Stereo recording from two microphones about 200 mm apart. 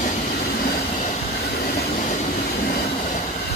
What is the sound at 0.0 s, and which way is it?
Train, 45° left (ahead or behind).